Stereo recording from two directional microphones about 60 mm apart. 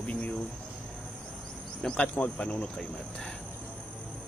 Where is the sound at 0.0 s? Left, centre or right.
Centre.